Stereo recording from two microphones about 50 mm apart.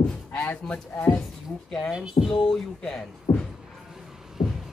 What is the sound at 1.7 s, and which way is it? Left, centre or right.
Speech, centre.